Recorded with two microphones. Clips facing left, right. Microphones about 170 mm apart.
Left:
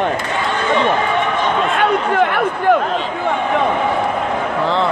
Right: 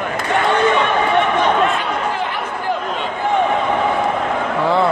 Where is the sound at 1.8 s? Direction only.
60° left (ahead or behind).